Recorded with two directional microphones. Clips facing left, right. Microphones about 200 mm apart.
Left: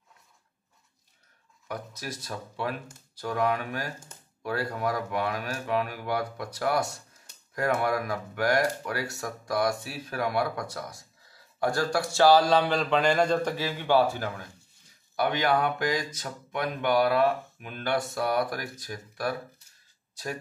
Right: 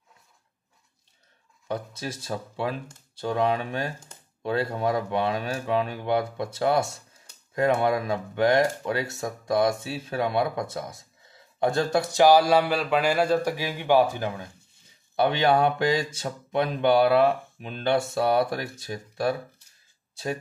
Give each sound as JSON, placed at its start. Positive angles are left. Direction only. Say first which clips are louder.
{"t": 1.7, "sound": "speech", "louder": "right 5 dB", "side_deg": -25}